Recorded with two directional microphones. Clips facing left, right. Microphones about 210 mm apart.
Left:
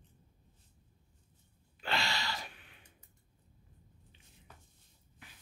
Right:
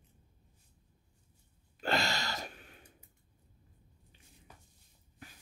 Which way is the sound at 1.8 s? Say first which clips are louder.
Right 4 dB; 45° right (ahead or behind).